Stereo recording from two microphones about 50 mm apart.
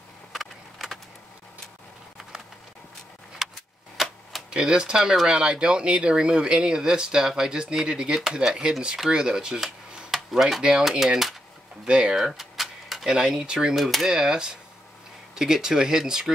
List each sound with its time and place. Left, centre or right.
0.3 s vehicle: centre
3.4 s a sound: centre
3.9 s tick-tock: centre
4.5 s speech: centre
12.3 s a sound: centre
13.7 s speech: centre
14.0 s speech: centre